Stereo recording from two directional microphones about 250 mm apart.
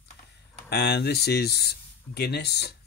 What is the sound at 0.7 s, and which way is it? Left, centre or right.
Speech, left.